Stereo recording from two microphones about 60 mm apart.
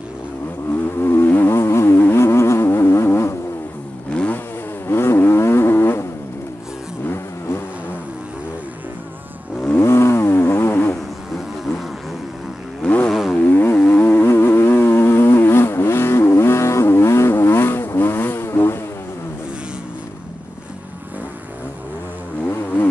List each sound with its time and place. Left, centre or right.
1.0 s a sound: left
1.5 s music: left
4.8 s vehicle: left
7.1 s vehicle: left
9.8 s motorcycle: left
12.8 s vehicle: left
13.1 s motorcycle: centre
13.4 s a sound: left
14.2 s vehicle: left